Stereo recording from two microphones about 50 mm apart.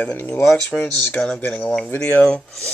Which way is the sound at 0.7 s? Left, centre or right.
Left.